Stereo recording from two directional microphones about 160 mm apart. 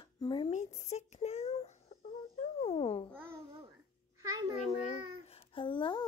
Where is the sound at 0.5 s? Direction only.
50° left (ahead or behind).